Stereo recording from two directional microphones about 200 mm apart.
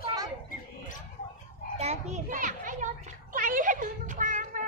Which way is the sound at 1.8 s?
35° right (ahead or behind).